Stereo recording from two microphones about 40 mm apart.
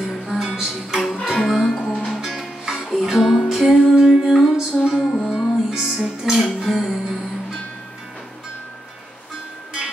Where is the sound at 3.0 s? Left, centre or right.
Centre.